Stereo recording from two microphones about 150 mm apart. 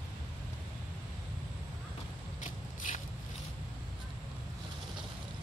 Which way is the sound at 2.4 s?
55° left (ahead or behind).